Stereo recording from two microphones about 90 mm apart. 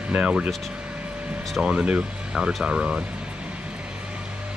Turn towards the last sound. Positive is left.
turn(degrees=-10)  # may be behind; listen again after turning